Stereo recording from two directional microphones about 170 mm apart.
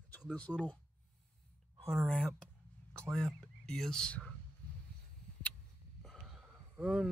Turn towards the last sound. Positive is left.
turn(degrees=-5)  # may be behind; listen again after turning